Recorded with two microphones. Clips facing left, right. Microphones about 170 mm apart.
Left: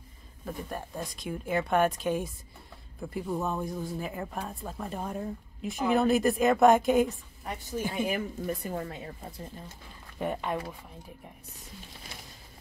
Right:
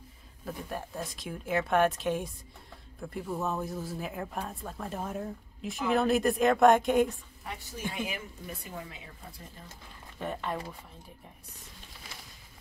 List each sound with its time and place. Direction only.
0.5 s speech: centre (ahead or behind)
7.4 s a woman's voice: 45° left (ahead or behind)
10.1 s speech: 10° left (ahead or behind)